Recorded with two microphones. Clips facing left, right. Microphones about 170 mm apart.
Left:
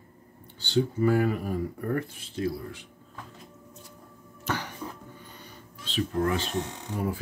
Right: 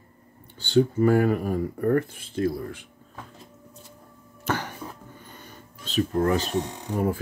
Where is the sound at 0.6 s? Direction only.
50° right (ahead or behind).